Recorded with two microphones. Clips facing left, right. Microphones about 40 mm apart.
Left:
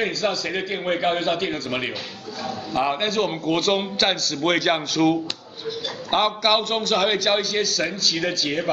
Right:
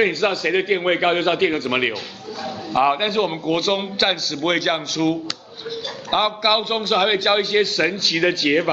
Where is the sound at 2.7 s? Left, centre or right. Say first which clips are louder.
Right 4 dB; centre.